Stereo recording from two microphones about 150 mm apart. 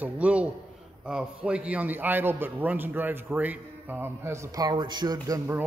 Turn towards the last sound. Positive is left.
turn(degrees=-20)  # may be behind; listen again after turning